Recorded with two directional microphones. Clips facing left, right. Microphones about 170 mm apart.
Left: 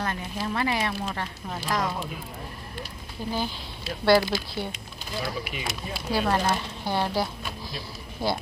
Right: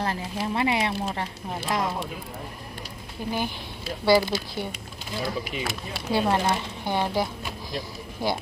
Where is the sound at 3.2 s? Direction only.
15° right (ahead or behind).